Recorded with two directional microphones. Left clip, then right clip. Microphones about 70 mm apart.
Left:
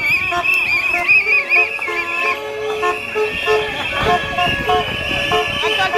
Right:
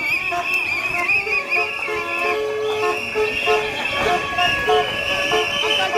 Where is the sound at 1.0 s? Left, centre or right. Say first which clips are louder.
Left 7 dB; left.